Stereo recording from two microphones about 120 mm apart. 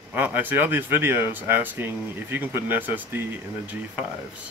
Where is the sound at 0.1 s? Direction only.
15° right (ahead or behind).